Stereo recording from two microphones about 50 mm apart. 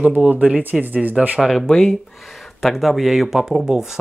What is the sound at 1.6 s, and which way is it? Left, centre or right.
Speech, centre.